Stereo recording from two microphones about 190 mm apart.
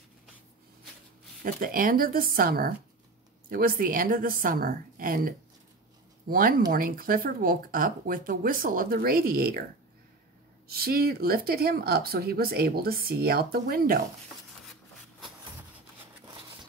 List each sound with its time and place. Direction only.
1.4 s speech: 45° right (ahead or behind)
10.7 s speech: 50° right (ahead or behind)
16.3 s a sound: 25° right (ahead or behind)